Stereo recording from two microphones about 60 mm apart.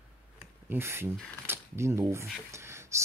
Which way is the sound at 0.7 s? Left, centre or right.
Right.